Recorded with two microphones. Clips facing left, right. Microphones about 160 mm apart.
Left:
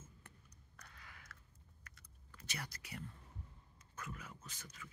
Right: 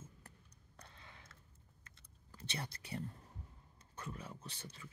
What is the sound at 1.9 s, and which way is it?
Typing, 30° right (ahead or behind).